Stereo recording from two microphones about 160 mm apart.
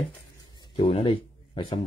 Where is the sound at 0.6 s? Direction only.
35° left (ahead or behind).